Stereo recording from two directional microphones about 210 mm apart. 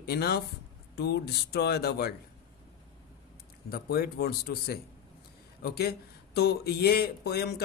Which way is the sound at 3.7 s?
45° left (ahead or behind).